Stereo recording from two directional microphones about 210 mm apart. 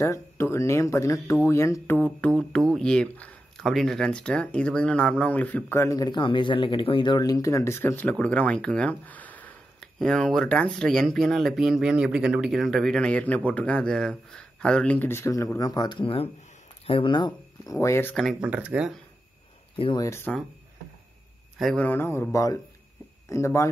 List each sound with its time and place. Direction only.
0.0 s speech: 15° left (ahead or behind); by 18.9 s 5° right (ahead or behind)
19.8 s speech: 20° left (ahead or behind)
21.5 s speech: 5° left (ahead or behind)